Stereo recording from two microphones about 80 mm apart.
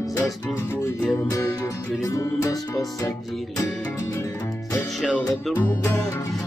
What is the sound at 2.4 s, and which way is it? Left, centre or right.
Music, left.